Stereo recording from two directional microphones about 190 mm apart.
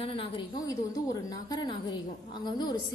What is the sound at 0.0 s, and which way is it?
A woman's voice, 30° left (ahead or behind).